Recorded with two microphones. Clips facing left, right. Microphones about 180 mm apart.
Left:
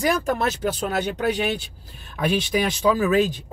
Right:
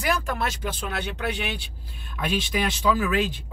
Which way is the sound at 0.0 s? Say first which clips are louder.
Left 5 dB; 45° left (ahead or behind).